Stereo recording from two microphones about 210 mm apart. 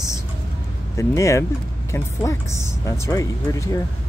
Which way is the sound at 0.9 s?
15° left (ahead or behind).